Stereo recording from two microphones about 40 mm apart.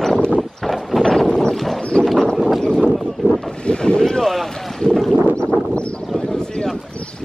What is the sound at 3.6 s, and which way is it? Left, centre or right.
Boat, left.